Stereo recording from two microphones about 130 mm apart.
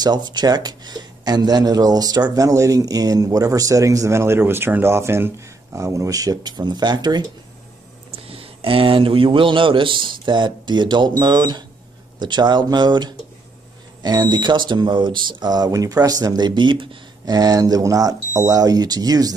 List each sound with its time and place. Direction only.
0.0 s a man's voice: 35° right (ahead or behind)
8.3 s a man's voice: 45° right (ahead or behind)
17.2 s a man's voice: 30° right (ahead or behind)